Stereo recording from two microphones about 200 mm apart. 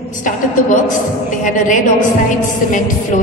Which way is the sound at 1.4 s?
40° left (ahead or behind).